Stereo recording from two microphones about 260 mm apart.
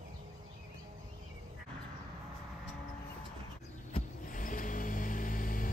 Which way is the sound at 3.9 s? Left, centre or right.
Left.